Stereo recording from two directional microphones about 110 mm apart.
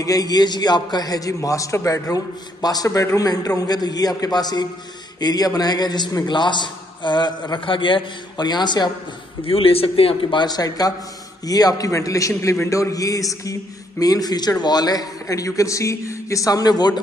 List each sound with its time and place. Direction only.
0.0 s a man's voice: 35° left (ahead or behind)
9.4 s a man's voice: 55° left (ahead or behind)
10.4 s a man's voice: 35° left (ahead or behind)